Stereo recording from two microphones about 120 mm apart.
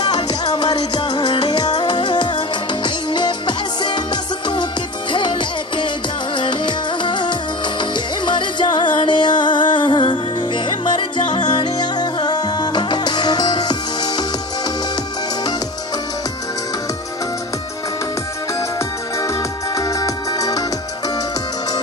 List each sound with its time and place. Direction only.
0.0 s music: 35° left (ahead or behind)
19.1 s music: 25° left (ahead or behind)